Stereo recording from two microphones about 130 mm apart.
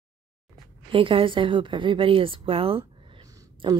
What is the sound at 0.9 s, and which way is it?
Speech, 45° right (ahead or behind).